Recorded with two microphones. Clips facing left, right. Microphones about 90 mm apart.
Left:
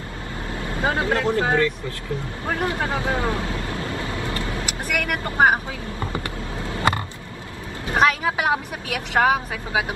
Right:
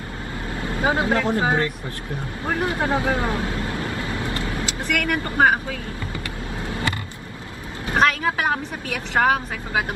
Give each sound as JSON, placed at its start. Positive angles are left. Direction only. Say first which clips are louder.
{"t": 0.8, "sound": "speech", "louder": "right 1 dB", "side_deg": -20}
{"t": 2.7, "sound": "speech", "louder": "right 2 dB", "side_deg": -25}
{"t": 4.2, "sound": "vehicle", "louder": "even", "side_deg": -25}
{"t": 4.9, "sound": "a woman's voice", "louder": "right 1 dB", "side_deg": 10}
{"t": 8.0, "sound": "a woman's voice", "louder": "left 1 dB", "side_deg": 10}